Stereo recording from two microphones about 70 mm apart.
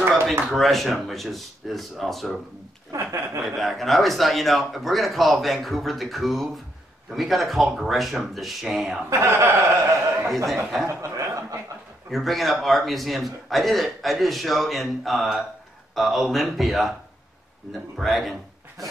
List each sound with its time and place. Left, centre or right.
0.5 s a man's voice: centre
2.9 s speech: right
3.4 s a man's voice: centre
9.1 s speech: right
10.2 s a man's voice: centre
11.0 s chuckle: right
12.1 s a man's voice: centre
17.9 s a man's voice: centre